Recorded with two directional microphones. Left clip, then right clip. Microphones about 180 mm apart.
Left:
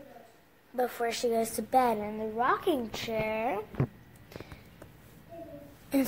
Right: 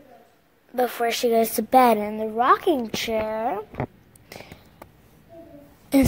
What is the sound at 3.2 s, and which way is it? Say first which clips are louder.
Speech: right 5 dB; 25° right (ahead or behind).